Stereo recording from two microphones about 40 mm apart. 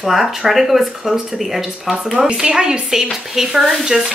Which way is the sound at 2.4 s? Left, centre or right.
Centre.